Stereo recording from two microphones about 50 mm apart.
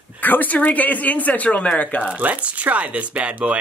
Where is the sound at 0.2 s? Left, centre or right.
Left.